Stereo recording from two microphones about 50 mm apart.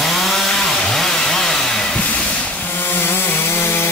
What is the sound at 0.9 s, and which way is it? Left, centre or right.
Chainsaw, centre.